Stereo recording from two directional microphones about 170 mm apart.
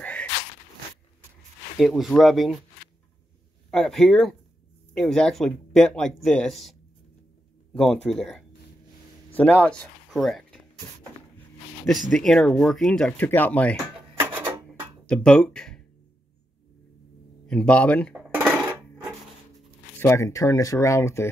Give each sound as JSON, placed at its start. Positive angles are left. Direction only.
{"t": 0.0, "sound": "a sound", "side_deg": 10}
{"t": 1.8, "sound": "speech", "side_deg": 0}
{"t": 3.7, "sound": "speech", "side_deg": 5}
{"t": 11.9, "sound": "speech", "side_deg": 0}
{"t": 14.2, "sound": "filing", "side_deg": -15}
{"t": 15.0, "sound": "speech", "side_deg": 5}
{"t": 17.5, "sound": "speech", "side_deg": 5}
{"t": 18.1, "sound": "coin", "side_deg": -5}
{"t": 20.0, "sound": "speech", "side_deg": 15}